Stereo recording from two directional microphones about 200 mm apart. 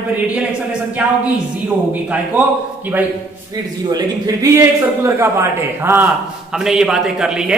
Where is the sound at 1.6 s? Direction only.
5° right (ahead or behind).